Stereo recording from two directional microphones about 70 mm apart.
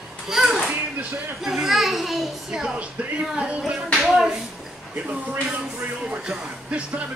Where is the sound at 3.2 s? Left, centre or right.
Centre.